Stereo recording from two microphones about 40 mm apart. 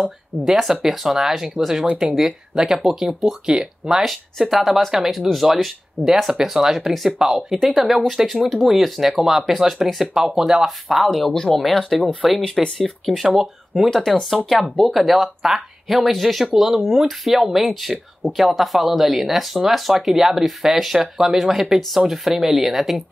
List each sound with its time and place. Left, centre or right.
0.6 s speech: centre
1.8 s speech: right; by 3.3 s centre
3.4 s speech: centre
4.0 s speech: centre
11.5 s speech: centre
13.8 s speech: centre